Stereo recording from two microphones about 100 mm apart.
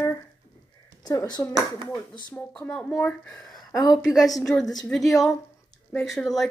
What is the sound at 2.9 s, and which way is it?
Speech, 30° left (ahead or behind).